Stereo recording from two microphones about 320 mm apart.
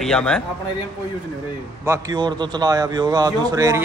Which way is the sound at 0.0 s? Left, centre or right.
Centre.